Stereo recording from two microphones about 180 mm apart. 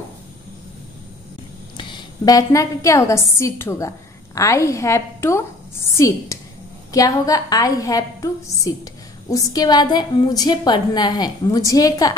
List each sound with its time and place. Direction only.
1.8 s a woman's voice: 25° left (ahead or behind)